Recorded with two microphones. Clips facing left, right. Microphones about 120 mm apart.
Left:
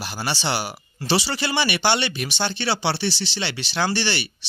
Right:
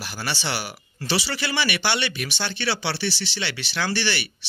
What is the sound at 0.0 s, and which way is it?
Speech, 25° left (ahead or behind).